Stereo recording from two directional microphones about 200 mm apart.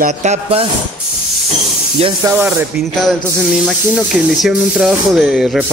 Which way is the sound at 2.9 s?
Centre (ahead or behind).